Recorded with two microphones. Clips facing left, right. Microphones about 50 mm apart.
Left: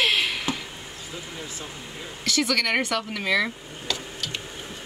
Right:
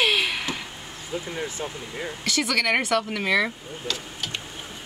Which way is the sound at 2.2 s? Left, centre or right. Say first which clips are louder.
Left 1 dB; centre.